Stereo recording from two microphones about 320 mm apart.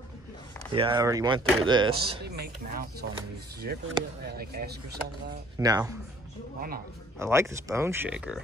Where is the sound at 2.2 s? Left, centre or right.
Right.